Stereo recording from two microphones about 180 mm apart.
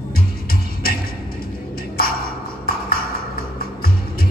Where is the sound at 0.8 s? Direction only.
55° left (ahead or behind).